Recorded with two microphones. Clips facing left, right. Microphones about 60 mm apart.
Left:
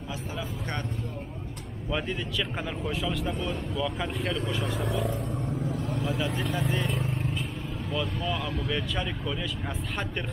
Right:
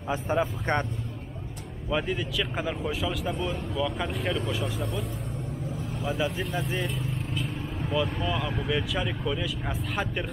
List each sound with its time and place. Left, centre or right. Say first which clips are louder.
0.1 s speech: right 10 dB; right
1.9 s speech: right 3 dB; centre
5.9 s speech: right 4 dB; centre
7.9 s speech: right 3 dB; centre